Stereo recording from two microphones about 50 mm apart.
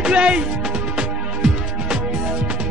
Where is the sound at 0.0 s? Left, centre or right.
Centre.